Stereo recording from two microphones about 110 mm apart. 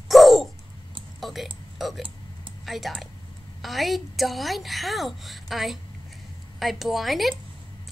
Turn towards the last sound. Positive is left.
turn(degrees=0)  # may be behind; listen again after turning